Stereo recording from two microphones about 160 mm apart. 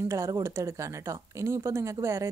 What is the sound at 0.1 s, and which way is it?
A woman's voice, 20° right (ahead or behind).